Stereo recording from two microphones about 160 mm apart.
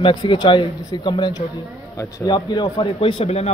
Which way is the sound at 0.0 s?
30° left (ahead or behind).